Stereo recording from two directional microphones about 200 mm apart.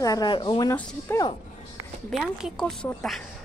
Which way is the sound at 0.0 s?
20° left (ahead or behind).